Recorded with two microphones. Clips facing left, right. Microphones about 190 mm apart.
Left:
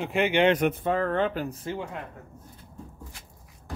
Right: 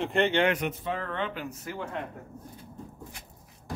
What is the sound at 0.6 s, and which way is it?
Speech, 50° left (ahead or behind).